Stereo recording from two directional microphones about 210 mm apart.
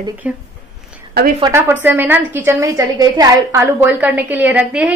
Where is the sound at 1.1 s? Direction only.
50° right (ahead or behind).